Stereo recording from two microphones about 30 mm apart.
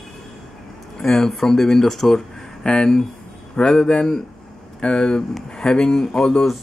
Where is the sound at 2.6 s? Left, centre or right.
Left.